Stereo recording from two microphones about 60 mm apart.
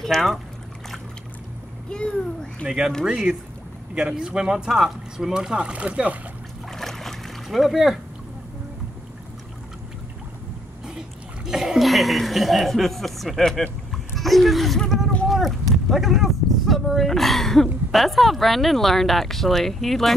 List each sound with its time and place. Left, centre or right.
0.0 s speech: centre
1.9 s a child's voice: centre
3.1 s speech: centre
6.7 s boat: centre
11.0 s chuckle: centre
13.4 s speech: centre